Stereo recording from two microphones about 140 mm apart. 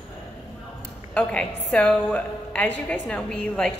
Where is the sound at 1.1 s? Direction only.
5° left (ahead or behind).